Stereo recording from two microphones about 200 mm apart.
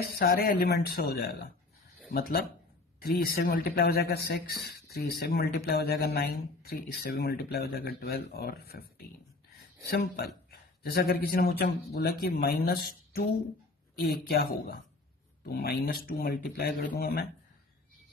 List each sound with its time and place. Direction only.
0.0 s speech: 50° left (ahead or behind)